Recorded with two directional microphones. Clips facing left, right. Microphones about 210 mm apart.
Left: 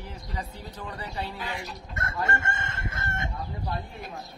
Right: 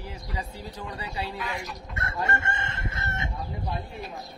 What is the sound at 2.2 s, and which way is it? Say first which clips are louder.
Chicken: right 1 dB; 45° left (ahead or behind).